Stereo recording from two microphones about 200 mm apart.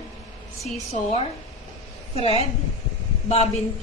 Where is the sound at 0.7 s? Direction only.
35° left (ahead or behind).